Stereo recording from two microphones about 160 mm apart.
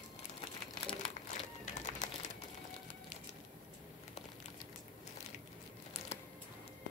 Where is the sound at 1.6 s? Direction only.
50° left (ahead or behind).